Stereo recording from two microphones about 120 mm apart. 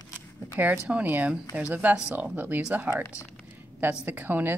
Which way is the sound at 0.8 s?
10° right (ahead or behind).